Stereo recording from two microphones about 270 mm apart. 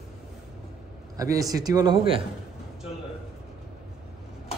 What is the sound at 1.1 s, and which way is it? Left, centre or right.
A man's voice, centre.